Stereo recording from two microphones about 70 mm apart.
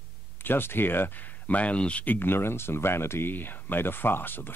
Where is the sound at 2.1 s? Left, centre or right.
Left.